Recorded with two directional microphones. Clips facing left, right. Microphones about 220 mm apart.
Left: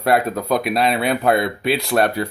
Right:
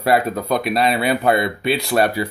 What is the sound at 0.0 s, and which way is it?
Speech, centre (ahead or behind).